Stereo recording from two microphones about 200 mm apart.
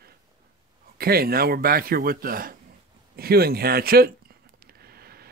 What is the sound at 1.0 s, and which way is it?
Speech, 50° right (ahead or behind).